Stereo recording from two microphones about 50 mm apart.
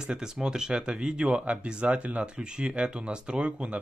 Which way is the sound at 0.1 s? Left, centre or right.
Centre.